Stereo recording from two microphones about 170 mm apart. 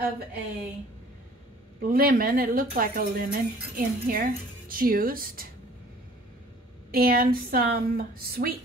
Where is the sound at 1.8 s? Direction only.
55° right (ahead or behind).